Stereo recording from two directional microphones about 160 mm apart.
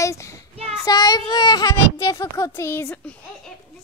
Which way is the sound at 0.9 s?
25° left (ahead or behind).